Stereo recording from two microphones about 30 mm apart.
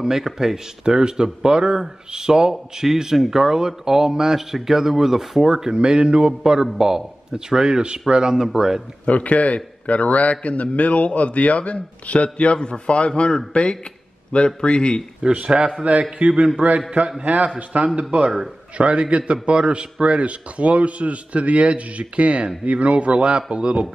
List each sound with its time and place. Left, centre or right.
0.0 s speech: centre
0.8 s speech: right
5.8 s speech: right
9.0 s a man's voice: left
15.2 s a man's voice: right
18.8 s a man's voice: right